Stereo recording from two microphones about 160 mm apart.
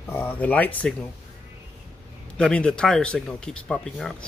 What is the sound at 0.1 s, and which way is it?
Speech, 10° left (ahead or behind).